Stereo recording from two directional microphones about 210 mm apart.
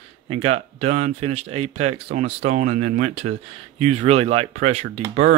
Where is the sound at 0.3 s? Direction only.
30° right (ahead or behind).